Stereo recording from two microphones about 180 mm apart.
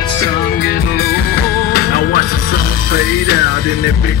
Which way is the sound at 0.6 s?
55° left (ahead or behind).